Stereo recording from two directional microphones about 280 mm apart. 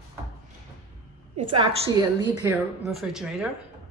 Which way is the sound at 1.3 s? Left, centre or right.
Centre.